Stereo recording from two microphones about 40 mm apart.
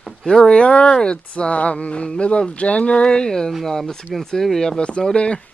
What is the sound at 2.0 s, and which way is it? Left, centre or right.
Speech, left.